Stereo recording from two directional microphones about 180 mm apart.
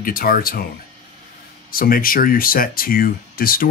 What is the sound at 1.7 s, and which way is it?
Speech, 55° left (ahead or behind).